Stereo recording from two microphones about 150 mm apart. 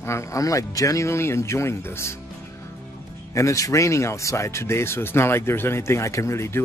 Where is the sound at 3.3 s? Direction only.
20° left (ahead or behind).